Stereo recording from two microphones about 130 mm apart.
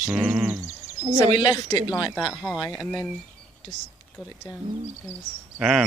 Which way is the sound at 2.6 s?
30° left (ahead or behind).